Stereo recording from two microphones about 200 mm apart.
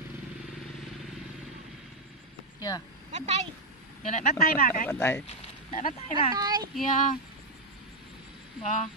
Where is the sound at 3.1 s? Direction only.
35° right (ahead or behind).